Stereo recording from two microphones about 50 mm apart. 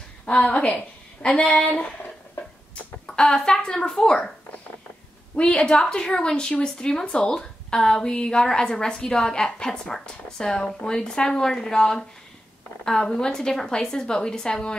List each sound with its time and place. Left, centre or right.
0.2 s a woman's voice: left
3.1 s a woman's voice: centre
5.3 s a woman's voice: left